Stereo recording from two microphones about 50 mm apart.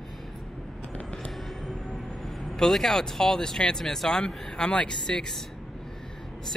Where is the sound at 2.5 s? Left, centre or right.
Centre.